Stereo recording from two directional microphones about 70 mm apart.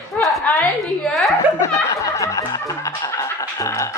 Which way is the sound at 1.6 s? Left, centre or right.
Left.